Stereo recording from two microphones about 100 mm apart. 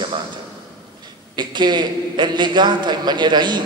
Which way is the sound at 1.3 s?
50° right (ahead or behind).